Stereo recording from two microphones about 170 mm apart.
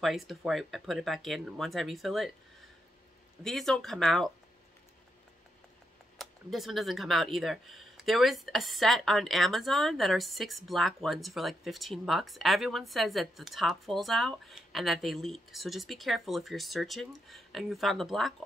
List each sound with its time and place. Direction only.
0.0 s speech: centre (ahead or behind)
3.4 s speech: centre (ahead or behind)
6.1 s speech: centre (ahead or behind)